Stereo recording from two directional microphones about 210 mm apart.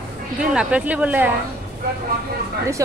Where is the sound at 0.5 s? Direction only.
5° right (ahead or behind).